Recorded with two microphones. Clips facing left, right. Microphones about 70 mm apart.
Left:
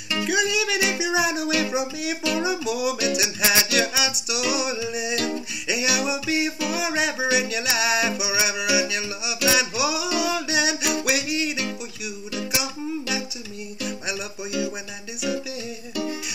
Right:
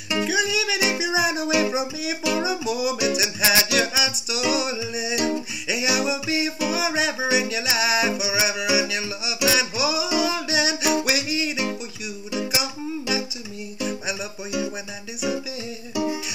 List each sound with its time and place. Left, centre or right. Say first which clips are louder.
0.2 s music: left 1 dB; centre
15.9 s music: right 4 dB; centre